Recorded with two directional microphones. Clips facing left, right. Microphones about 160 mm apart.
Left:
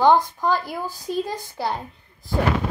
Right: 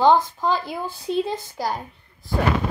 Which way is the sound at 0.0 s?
15° left (ahead or behind).